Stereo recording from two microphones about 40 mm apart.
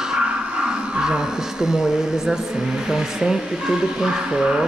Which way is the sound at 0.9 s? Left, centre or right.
Centre.